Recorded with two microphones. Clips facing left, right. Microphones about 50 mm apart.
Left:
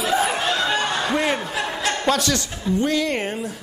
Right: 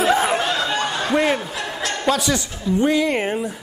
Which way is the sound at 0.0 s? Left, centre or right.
Right.